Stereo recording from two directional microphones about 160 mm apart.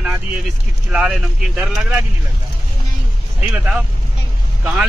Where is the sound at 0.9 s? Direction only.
5° right (ahead or behind).